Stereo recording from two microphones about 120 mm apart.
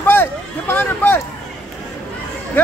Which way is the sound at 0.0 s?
20° left (ahead or behind).